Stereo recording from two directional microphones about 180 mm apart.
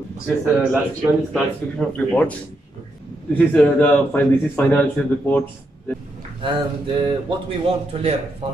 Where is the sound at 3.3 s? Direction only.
10° left (ahead or behind).